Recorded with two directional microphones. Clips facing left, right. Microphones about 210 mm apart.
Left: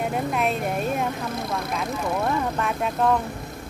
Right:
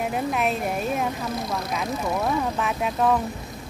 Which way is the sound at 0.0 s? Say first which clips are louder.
Even; centre (ahead or behind).